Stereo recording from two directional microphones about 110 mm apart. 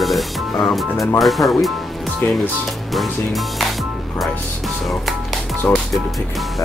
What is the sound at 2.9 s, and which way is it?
Speech, centre (ahead or behind).